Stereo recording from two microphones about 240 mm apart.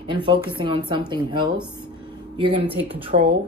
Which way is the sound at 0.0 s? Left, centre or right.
Right.